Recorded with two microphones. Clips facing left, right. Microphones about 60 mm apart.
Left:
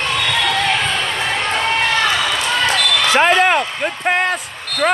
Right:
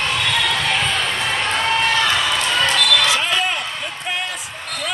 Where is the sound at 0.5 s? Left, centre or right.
Left.